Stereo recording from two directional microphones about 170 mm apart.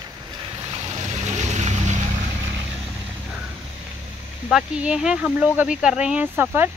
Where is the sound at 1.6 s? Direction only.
45° right (ahead or behind).